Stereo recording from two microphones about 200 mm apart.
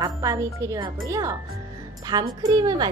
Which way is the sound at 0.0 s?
15° right (ahead or behind).